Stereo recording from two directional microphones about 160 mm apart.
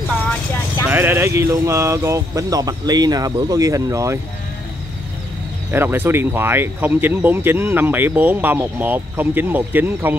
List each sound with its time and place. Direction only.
0.8 s speech: 15° right (ahead or behind)
5.7 s speech: 15° right (ahead or behind)